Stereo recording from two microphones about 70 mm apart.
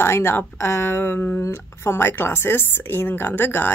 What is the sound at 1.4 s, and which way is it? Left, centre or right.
A woman's voice, left.